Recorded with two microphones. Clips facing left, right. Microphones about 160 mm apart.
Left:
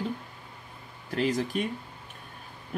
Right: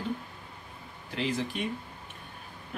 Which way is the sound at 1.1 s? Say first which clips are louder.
Left 4 dB; 40° left (ahead or behind).